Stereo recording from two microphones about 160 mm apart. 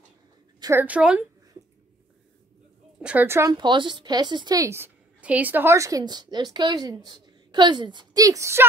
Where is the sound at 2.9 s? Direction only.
10° right (ahead or behind).